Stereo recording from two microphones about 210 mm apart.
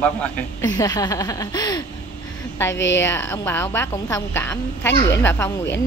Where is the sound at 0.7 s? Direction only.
20° left (ahead or behind).